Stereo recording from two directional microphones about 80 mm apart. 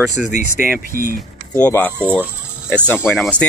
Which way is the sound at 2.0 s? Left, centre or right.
Right.